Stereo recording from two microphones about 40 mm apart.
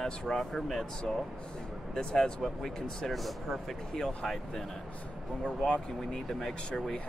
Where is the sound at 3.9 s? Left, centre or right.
Centre.